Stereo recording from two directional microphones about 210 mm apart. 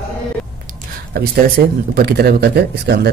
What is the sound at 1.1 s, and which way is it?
Speech, 45° right (ahead or behind).